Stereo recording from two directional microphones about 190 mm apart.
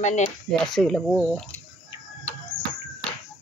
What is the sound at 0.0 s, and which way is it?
Speech, 40° left (ahead or behind).